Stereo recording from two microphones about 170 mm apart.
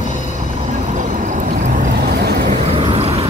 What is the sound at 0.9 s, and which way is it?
Vehicle, 45° right (ahead or behind).